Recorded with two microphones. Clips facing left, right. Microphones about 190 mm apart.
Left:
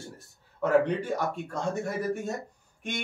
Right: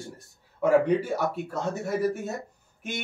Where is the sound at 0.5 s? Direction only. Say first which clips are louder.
Right 3 dB; 10° right (ahead or behind).